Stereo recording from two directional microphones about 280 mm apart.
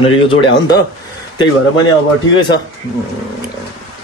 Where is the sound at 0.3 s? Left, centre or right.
Centre.